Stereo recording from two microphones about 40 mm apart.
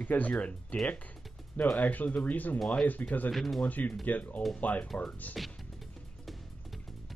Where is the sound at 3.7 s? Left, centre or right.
Left.